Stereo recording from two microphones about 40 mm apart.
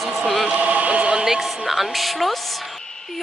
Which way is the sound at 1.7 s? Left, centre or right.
Centre.